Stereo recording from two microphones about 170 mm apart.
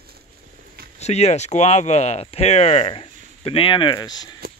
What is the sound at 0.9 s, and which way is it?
Speech, 40° left (ahead or behind).